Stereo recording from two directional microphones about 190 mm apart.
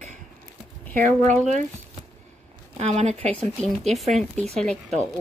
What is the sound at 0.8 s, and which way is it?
Speech, 10° left (ahead or behind).